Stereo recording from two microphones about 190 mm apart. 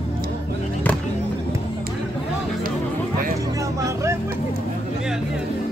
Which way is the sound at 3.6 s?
15° right (ahead or behind).